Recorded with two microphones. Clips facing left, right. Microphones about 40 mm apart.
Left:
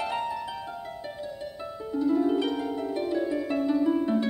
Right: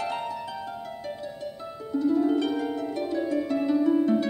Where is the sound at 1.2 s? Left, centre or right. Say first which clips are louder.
Even; centre.